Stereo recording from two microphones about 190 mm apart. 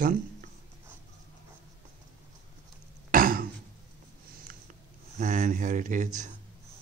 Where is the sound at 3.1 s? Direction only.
50° right (ahead or behind).